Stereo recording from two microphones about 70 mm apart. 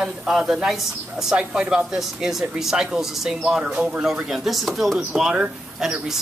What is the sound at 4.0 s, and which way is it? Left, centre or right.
Speech, centre.